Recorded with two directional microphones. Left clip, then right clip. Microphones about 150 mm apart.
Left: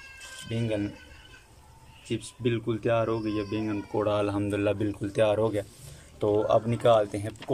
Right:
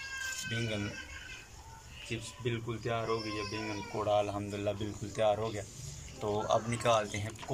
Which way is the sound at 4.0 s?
90° left.